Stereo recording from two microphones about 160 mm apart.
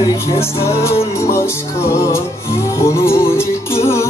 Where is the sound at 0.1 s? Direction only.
15° left (ahead or behind).